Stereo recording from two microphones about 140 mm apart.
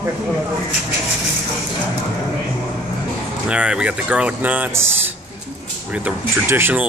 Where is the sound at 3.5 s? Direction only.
10° right (ahead or behind).